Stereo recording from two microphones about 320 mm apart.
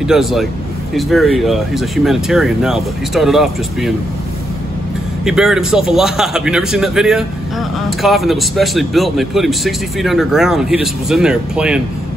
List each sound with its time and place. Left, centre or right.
0.0 s speech: centre
5.2 s speech: centre